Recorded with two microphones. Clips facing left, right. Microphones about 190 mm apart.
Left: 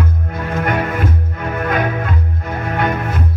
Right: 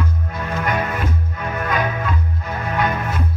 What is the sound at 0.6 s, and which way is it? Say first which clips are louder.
Music: left 4 dB; 55° left (ahead or behind).